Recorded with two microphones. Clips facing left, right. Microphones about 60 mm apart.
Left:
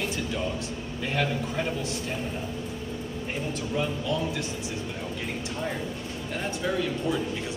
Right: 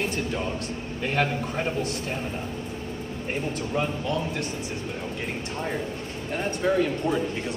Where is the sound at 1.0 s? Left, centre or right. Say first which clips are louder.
Right 2 dB; right.